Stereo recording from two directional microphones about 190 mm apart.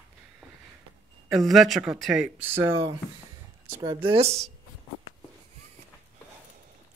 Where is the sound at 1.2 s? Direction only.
Centre (ahead or behind); by 4.5 s 35° right (ahead or behind).